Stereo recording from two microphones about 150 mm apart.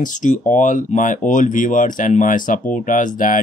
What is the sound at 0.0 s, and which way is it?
Speech, 60° left (ahead or behind).